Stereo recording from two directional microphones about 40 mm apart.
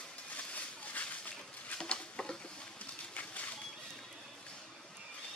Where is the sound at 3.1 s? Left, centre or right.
Left.